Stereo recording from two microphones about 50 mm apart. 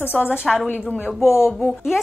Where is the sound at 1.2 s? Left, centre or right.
Left.